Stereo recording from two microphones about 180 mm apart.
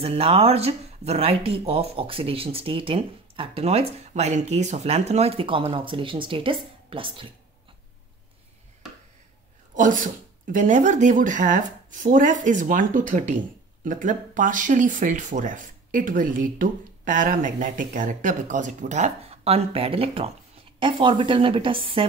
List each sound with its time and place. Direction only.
0.0 s speech: 35° right (ahead or behind)
9.8 s a woman's voice: 45° right (ahead or behind); by 22.0 s 30° right (ahead or behind)